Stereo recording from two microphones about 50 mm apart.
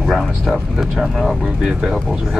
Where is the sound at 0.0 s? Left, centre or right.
Centre.